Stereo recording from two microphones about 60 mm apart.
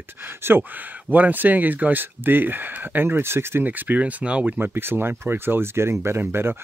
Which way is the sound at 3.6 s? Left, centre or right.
Right.